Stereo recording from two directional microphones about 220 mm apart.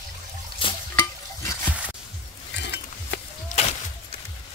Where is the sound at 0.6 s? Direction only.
15° left (ahead or behind).